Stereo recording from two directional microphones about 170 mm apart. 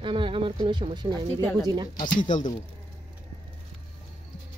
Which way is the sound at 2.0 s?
25° left (ahead or behind).